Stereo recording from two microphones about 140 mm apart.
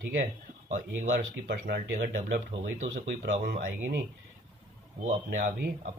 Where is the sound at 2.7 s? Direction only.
65° right (ahead or behind).